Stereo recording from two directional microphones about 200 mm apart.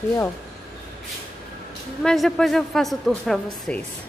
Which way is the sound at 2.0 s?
Centre (ahead or behind).